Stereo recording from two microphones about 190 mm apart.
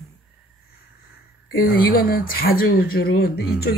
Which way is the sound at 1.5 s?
50° left (ahead or behind).